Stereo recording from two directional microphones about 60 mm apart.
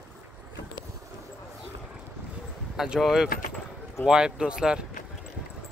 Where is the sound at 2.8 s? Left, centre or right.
Centre.